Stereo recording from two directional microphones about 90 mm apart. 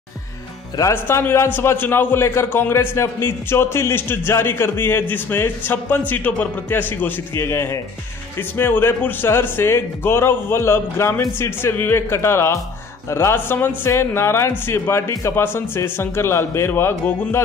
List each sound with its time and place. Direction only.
0.9 s a man's voice: 25° left (ahead or behind)